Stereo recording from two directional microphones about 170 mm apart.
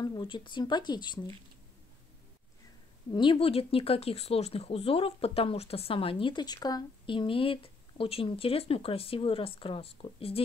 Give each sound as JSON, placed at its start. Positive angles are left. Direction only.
{"t": 0.0, "sound": "speech", "side_deg": 25}
{"t": 3.1, "sound": "speech", "side_deg": 30}